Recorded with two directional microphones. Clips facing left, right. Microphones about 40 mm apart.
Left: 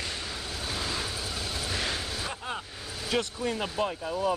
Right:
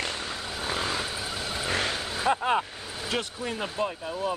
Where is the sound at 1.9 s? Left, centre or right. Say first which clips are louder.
Right 8 dB; centre.